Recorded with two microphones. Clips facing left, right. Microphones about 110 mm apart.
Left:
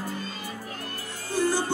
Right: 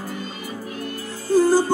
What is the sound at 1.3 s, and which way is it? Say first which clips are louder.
Music: right 9 dB; 40° right (ahead or behind).